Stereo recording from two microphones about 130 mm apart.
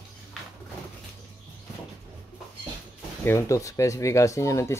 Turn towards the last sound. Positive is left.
turn(degrees=20)  # may be behind; listen again after turning